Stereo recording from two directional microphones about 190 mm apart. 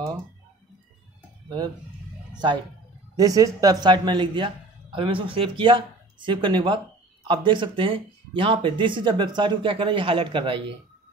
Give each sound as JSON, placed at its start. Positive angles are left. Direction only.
{"t": 2.3, "sound": "speech", "side_deg": -25}